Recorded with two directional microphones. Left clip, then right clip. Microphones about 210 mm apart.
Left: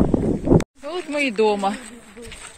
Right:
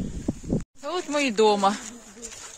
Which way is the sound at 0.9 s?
25° right (ahead or behind).